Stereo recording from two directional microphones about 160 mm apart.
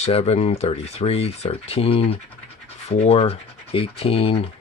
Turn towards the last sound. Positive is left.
turn(degrees=35)  # may be behind; listen again after turning